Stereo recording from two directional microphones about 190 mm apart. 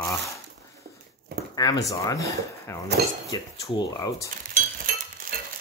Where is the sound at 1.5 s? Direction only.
20° left (ahead or behind).